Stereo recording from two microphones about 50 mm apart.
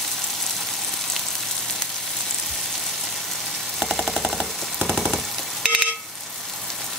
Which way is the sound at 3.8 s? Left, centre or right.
Centre.